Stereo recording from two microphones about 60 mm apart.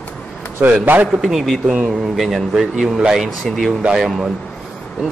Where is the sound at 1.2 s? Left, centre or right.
Centre.